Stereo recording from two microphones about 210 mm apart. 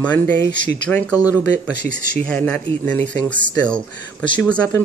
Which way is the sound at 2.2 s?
5° left (ahead or behind).